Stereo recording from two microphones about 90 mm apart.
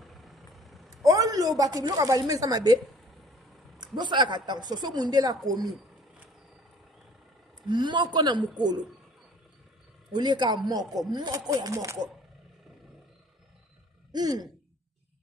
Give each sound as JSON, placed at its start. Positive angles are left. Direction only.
{"t": 0.0, "sound": "vehicle", "side_deg": 0}
{"t": 1.0, "sound": "a sound", "side_deg": -40}
{"t": 1.6, "sound": "a woman's voice", "side_deg": -45}
{"t": 3.2, "sound": "vehicle", "side_deg": 0}
{"t": 3.8, "sound": "a woman's voice", "side_deg": -55}
{"t": 7.6, "sound": "a man's voice", "side_deg": -60}
{"t": 10.1, "sound": "a woman's voice", "side_deg": -55}
{"t": 14.1, "sound": "a woman's voice", "side_deg": -45}